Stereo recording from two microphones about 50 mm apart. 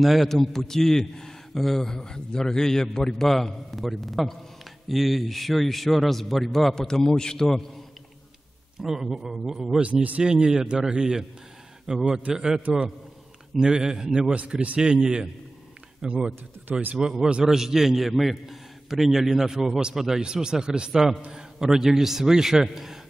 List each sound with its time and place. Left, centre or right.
0.0 s a man's voice: centre
8.8 s a man's voice: centre
9.8 s a man's voice: right
12.6 s speech: right
13.6 s a man's voice: centre
14.3 s a man's voice: right; by 22.9 s centre